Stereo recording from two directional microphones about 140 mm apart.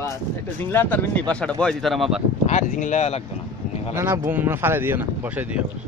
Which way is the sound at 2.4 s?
60° left (ahead or behind).